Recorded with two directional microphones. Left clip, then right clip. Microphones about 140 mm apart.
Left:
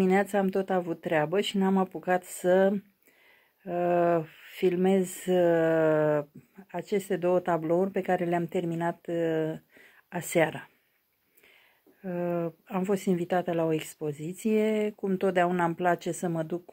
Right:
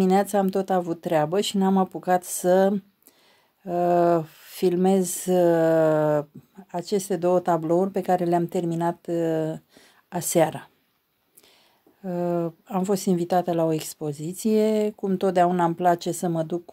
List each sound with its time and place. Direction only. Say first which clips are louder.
0.0 s a woman's voice: right 4 dB; 50° right (ahead or behind)
12.0 s a woman's voice: right 5 dB; 45° right (ahead or behind)
15.5 s a woman's voice: right 5 dB; 55° right (ahead or behind)
16.5 s speech: right 5 dB; 35° right (ahead or behind)